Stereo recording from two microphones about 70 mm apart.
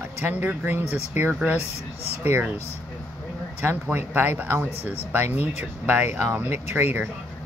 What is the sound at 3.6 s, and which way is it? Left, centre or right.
Speech, right.